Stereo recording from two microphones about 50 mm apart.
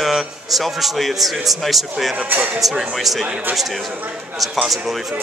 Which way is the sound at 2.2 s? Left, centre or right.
Right.